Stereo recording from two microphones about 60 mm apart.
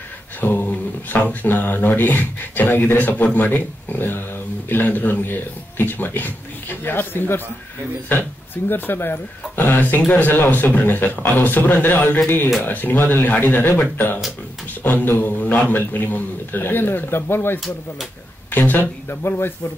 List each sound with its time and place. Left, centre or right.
0.4 s speech: left